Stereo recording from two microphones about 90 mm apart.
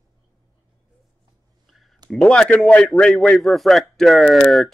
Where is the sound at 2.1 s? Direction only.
10° left (ahead or behind).